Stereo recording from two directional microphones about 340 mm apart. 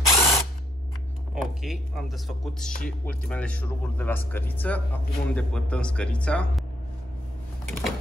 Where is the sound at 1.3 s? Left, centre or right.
Centre.